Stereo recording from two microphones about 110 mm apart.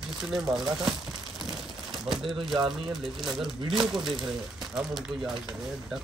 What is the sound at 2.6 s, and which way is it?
Speech, centre (ahead or behind).